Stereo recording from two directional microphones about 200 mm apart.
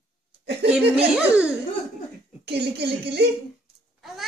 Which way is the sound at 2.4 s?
55° right (ahead or behind).